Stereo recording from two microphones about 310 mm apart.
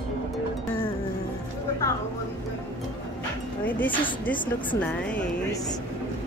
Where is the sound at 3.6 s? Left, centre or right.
Centre.